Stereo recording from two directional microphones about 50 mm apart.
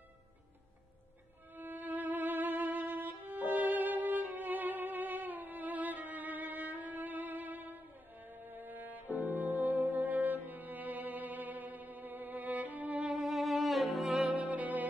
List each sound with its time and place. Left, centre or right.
1.5 s violin: right
13.1 s music: centre
14.3 s music: right